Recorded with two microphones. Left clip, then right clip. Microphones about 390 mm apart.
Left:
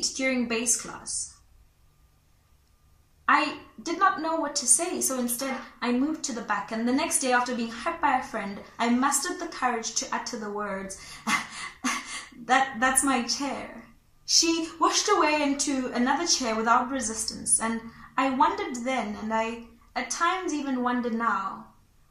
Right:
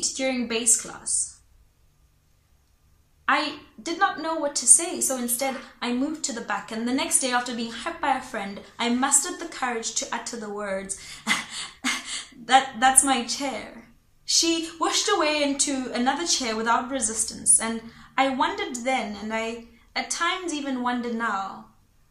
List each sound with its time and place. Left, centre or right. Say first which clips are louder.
0.3 s a woman's voice: right 2 dB; centre
3.3 s a woman's voice: left 1 dB; centre